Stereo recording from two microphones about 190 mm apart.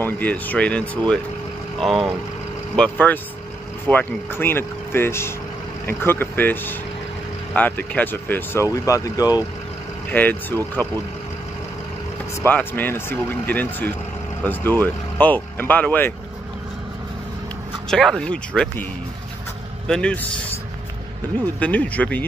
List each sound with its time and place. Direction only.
0.0 s speech: 10° left (ahead or behind)
10.1 s speech: 10° left (ahead or behind)
12.4 s speech: 10° left (ahead or behind)
17.8 s speech: 5° left (ahead or behind)
19.9 s speech: 5° left (ahead or behind)
21.5 s speech: 10° left (ahead or behind)